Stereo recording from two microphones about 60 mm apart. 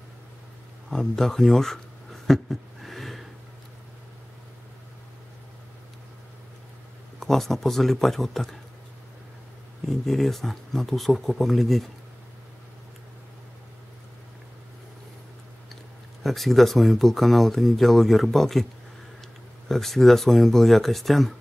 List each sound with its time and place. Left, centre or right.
0.8 s speech: centre
2.2 s a sound: centre
7.2 s speech: centre
9.8 s speech: centre
15.7 s speech: centre
19.7 s speech: centre